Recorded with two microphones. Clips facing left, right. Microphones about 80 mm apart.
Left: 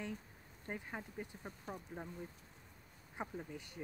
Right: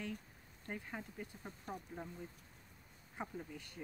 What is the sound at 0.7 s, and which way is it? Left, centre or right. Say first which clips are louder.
Speech: left 1 dB; centre.